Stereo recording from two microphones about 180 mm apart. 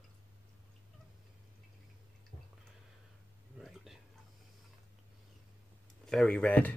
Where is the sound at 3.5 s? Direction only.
Centre (ahead or behind).